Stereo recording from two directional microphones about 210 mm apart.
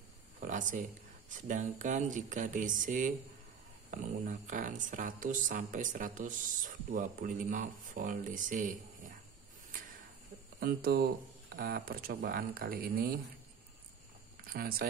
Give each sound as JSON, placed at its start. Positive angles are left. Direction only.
{"t": 0.4, "sound": "a sound", "side_deg": -35}
{"t": 1.3, "sound": "speech", "side_deg": -35}
{"t": 10.6, "sound": "speech", "side_deg": -45}
{"t": 14.4, "sound": "speech", "side_deg": -45}